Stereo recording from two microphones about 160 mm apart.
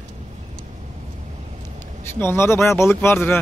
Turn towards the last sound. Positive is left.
turn(degrees=15)  # may be behind; listen again after turning